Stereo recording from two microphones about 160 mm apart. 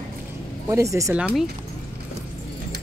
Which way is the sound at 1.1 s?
5° right (ahead or behind).